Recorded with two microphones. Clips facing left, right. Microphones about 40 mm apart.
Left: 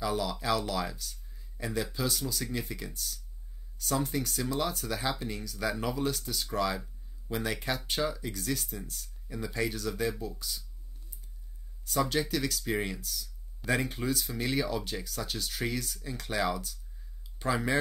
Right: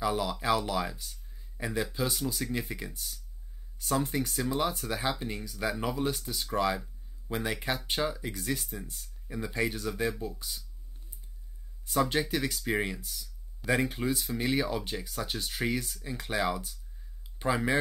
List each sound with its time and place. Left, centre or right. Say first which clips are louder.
0.0 s speech: right 2 dB; centre
11.8 s speech: right 1 dB; centre